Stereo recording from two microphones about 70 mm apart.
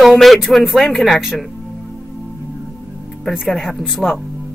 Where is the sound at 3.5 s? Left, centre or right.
Centre.